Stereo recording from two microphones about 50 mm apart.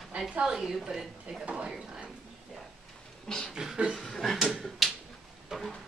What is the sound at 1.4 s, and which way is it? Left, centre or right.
Speech, right.